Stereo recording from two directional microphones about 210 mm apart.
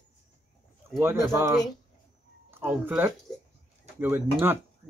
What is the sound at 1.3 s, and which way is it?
Speech, 10° right (ahead or behind).